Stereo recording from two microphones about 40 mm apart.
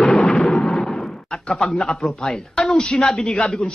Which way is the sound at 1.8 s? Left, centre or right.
Centre.